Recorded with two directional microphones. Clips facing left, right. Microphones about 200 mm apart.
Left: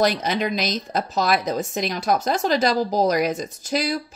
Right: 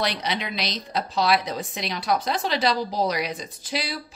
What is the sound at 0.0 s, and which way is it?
Speech, 45° left (ahead or behind).